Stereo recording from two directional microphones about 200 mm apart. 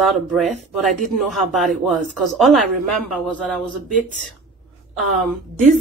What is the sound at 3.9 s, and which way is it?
Speech, 40° left (ahead or behind).